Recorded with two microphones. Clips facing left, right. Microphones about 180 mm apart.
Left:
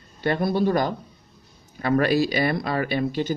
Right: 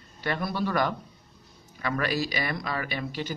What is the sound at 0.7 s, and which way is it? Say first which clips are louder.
Speech: left 5 dB; 30° left (ahead or behind).